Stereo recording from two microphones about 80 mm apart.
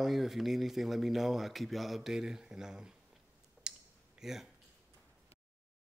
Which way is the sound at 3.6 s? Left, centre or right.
Centre.